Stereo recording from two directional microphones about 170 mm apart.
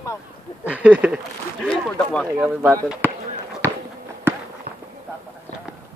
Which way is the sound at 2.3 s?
5° right (ahead or behind).